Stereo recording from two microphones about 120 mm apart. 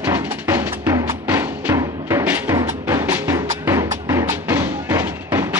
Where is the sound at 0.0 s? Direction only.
20° right (ahead or behind).